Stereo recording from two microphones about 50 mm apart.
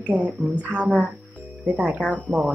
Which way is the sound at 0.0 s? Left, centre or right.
Right.